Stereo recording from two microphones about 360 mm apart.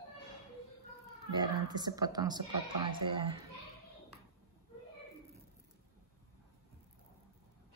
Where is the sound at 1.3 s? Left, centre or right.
Centre.